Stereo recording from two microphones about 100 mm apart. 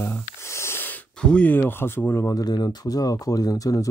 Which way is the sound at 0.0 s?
25° left (ahead or behind).